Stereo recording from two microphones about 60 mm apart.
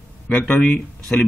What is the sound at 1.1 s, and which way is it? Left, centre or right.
Speech, centre.